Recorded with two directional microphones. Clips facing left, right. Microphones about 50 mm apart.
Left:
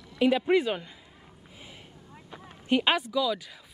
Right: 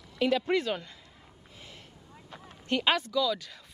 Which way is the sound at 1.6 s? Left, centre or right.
Centre.